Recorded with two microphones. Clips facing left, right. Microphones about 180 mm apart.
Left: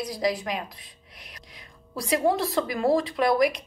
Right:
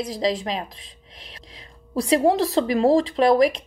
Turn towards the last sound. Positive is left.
turn(degrees=-25)  # may be behind; listen again after turning